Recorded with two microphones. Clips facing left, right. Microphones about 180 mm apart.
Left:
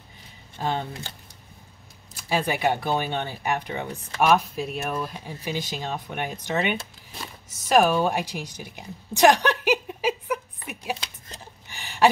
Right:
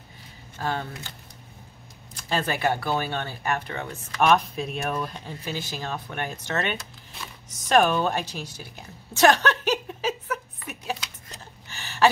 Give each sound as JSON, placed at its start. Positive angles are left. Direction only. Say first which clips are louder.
{"t": 0.6, "sound": "speech", "louder": "left 2 dB", "side_deg": 20}
{"t": 2.1, "sound": "speech", "louder": "left 2 dB", "side_deg": 10}
{"t": 4.2, "sound": "speech", "louder": "even", "side_deg": 5}
{"t": 7.4, "sound": "a sound", "louder": "left 1 dB", "side_deg": 5}